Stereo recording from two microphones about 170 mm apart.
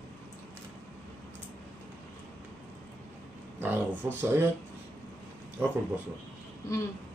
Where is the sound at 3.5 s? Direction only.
10° right (ahead or behind).